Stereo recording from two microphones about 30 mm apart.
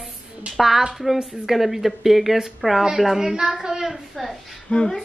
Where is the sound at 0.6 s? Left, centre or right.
Centre.